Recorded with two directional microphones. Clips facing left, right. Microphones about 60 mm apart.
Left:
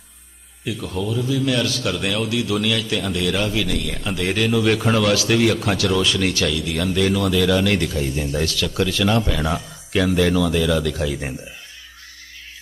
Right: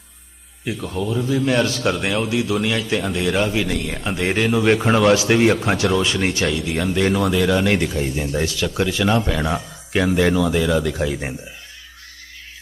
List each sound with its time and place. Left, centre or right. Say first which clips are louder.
0.7 s a man's voice: right 1 dB; right